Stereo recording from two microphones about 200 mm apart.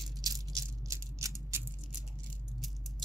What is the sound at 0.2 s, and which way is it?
Rattle, 15° right (ahead or behind).